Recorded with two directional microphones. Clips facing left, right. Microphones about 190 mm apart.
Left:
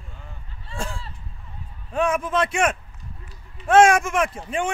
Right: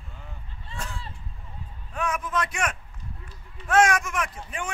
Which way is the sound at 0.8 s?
30° left (ahead or behind).